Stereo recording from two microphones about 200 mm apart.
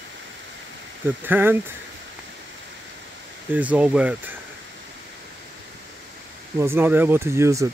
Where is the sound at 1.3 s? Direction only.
10° right (ahead or behind).